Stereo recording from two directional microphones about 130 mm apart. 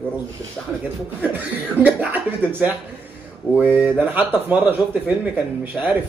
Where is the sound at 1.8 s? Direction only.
10° right (ahead or behind).